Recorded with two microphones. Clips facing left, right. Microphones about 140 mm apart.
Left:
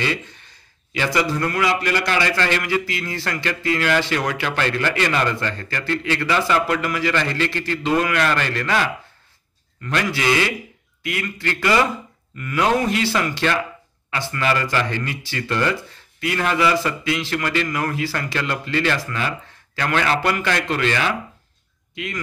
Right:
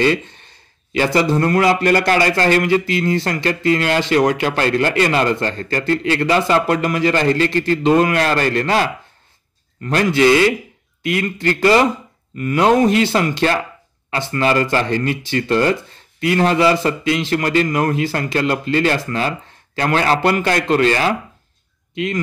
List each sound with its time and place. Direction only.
0.9 s a man's voice: 40° right (ahead or behind)
1.2 s speech: 25° right (ahead or behind)
1.5 s a man's voice: 40° right (ahead or behind)
2.8 s a man's voice: 25° right (ahead or behind)
7.1 s a man's voice: 40° right (ahead or behind)
11.0 s a man's voice: 25° right (ahead or behind)
15.4 s speech: 25° right (ahead or behind)
17.3 s a man's voice: 40° right (ahead or behind)
21.9 s speech: 25° right (ahead or behind)